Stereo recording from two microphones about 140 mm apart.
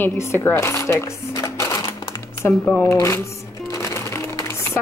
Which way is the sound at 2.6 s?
10° left (ahead or behind).